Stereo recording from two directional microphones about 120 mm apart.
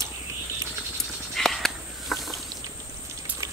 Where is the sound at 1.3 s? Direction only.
5° left (ahead or behind).